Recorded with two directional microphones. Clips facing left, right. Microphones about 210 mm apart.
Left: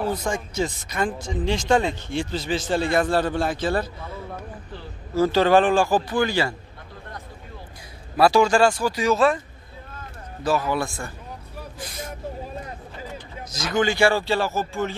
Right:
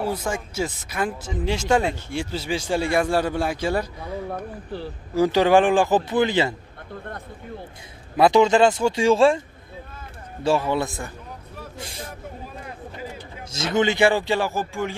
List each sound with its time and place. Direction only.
0.0 s speech: 5° right (ahead or behind)
8.2 s speech: 20° right (ahead or behind)
10.4 s speech: 25° right (ahead or behind)
11.8 s vehicle: 30° right (ahead or behind)
13.5 s speech: 25° right (ahead or behind)